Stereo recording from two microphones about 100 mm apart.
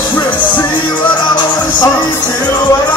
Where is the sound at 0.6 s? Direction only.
50° left (ahead or behind).